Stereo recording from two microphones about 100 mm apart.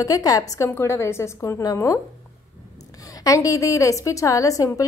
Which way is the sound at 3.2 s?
35° left (ahead or behind).